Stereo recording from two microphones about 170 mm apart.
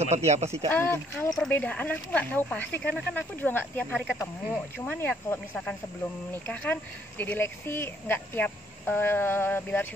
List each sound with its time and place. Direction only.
0.0 s speech: 40° right (ahead or behind)
0.7 s speech: 10° left (ahead or behind)